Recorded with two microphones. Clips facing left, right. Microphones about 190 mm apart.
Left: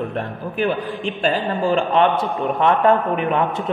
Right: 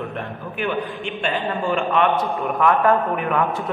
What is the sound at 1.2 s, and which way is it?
A man's voice, 35° left (ahead or behind).